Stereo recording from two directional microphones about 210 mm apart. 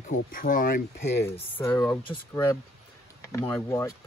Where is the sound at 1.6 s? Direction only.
15° left (ahead or behind).